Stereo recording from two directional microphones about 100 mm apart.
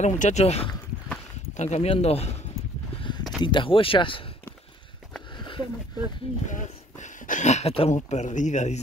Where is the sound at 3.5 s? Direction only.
55° left (ahead or behind).